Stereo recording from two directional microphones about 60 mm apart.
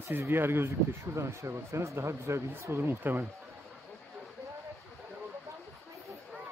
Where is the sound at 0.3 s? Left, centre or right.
Right.